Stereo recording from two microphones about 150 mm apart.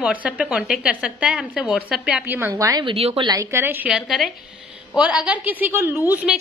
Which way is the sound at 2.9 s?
40° right (ahead or behind).